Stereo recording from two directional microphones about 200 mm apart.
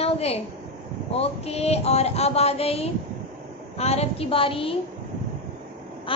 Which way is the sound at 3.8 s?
30° left (ahead or behind).